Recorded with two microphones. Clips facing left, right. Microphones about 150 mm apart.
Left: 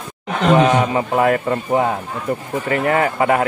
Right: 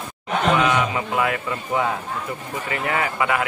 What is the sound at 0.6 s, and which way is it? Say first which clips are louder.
A man's voice: left 6 dB; 40° left (ahead or behind).